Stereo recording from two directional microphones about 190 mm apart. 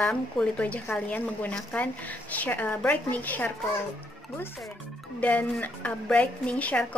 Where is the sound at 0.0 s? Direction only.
5° left (ahead or behind).